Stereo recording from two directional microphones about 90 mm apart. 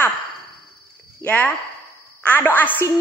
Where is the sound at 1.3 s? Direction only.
15° left (ahead or behind).